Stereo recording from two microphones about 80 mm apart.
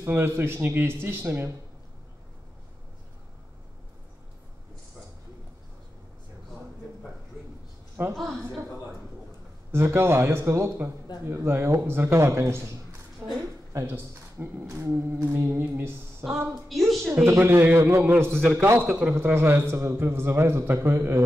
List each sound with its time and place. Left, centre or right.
0.0 s speech: right
8.0 s a woman's voice: right
9.7 s a man's voice: right
13.2 s a sound: right
13.7 s a man's voice: right
16.6 s a woman's voice: centre
17.1 s speech: right
18.9 s a man's voice: centre
19.1 s a man's voice: right